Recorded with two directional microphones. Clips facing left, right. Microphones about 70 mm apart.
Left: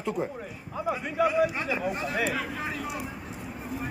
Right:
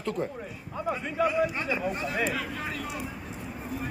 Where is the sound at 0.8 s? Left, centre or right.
Centre.